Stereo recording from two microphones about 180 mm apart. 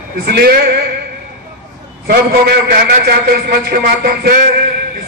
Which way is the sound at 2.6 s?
55° right (ahead or behind).